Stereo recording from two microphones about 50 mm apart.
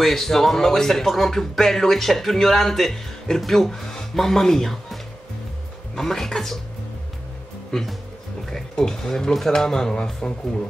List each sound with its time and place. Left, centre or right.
0.0 s speech: centre
8.5 s speech: centre